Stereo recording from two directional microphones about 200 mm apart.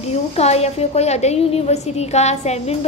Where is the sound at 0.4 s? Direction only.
30° left (ahead or behind).